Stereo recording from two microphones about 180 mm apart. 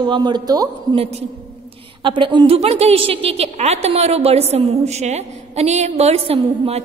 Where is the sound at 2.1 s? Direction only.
25° right (ahead or behind).